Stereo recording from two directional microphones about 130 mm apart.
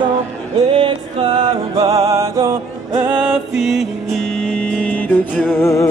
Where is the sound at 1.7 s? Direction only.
50° right (ahead or behind).